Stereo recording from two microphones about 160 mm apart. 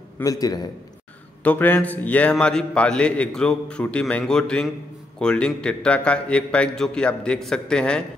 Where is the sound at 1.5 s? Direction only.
10° left (ahead or behind).